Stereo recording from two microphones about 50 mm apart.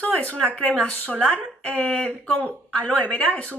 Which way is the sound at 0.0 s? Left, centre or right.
Left.